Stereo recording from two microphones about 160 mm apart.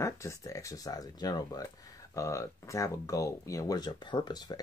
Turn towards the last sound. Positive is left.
turn(degrees=25)  # may be behind; listen again after turning